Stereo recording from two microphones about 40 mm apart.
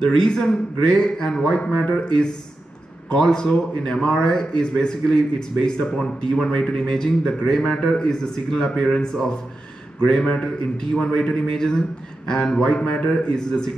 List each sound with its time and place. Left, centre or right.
0.0 s a man's voice: centre
1.6 s a man's voice: left
11.5 s a man's voice: centre
12.4 s a man's voice: left